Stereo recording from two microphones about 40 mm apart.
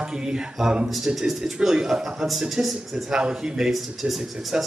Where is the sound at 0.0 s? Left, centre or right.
Centre.